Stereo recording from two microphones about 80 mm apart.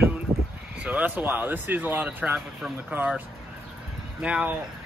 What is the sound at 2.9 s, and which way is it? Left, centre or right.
Speech, centre.